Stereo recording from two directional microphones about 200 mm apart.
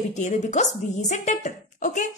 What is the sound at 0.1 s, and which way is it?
A woman's voice, 35° left (ahead or behind).